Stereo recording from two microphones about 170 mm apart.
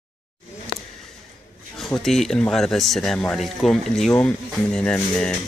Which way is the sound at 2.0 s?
Centre (ahead or behind).